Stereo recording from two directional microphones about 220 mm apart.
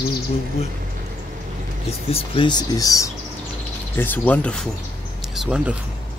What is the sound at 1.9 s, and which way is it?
Speech, 25° left (ahead or behind).